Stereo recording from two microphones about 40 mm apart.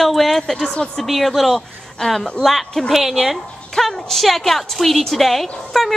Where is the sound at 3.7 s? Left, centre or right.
Centre.